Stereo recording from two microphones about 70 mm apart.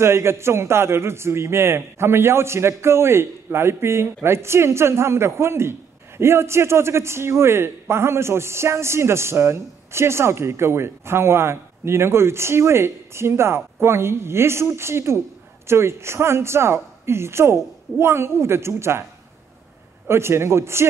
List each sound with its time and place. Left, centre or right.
0.0 s a man's voice: right
20.1 s a man's voice: right